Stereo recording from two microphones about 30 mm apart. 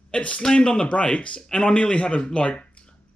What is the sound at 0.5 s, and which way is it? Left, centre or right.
Speech, left.